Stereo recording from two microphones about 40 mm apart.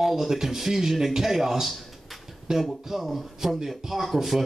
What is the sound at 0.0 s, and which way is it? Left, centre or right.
A man's voice, centre.